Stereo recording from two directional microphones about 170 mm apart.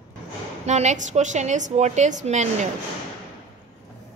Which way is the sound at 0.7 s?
40° right (ahead or behind).